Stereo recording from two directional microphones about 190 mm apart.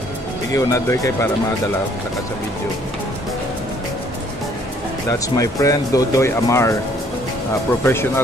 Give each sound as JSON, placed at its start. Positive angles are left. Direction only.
{"t": 0.5, "sound": "speech", "side_deg": 15}
{"t": 5.0, "sound": "speech", "side_deg": 15}
{"t": 7.8, "sound": "speech", "side_deg": 10}